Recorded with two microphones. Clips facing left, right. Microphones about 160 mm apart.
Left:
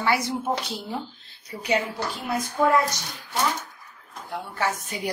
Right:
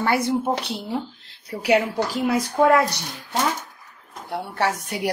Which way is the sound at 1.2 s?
75° right (ahead or behind).